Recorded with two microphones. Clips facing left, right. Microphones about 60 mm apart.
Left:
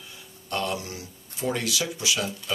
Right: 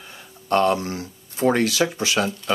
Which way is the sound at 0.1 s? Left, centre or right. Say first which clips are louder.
Right 11 dB; right.